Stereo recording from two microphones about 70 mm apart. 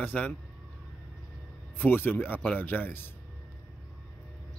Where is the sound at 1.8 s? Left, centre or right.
Left.